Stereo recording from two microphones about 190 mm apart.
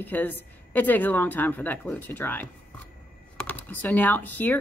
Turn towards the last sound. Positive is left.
turn(degrees=10)  # may be behind; listen again after turning